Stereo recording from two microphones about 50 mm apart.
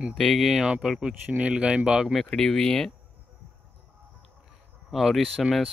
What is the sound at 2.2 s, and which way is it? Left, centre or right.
Speech, centre.